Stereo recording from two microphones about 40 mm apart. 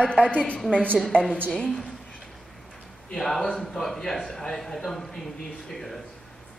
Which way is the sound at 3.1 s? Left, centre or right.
Centre.